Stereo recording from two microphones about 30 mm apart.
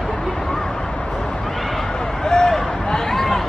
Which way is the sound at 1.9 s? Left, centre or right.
Centre.